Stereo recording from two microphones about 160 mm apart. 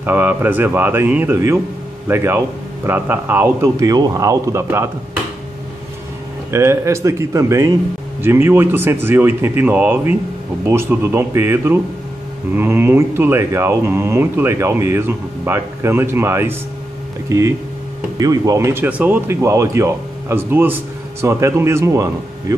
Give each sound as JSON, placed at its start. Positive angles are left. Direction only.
{"t": 0.0, "sound": "speech", "side_deg": -10}
{"t": 6.5, "sound": "speech", "side_deg": -15}